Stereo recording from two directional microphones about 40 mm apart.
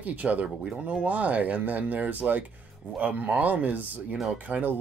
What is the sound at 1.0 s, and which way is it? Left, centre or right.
Speech, right.